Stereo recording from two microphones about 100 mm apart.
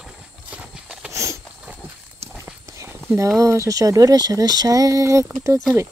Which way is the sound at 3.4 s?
30° right (ahead or behind).